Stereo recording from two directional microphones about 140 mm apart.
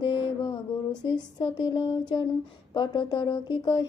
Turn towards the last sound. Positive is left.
turn(degrees=30)  # may be behind; listen again after turning